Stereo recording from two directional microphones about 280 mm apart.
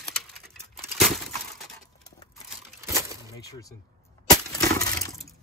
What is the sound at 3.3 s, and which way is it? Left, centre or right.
Speech, centre.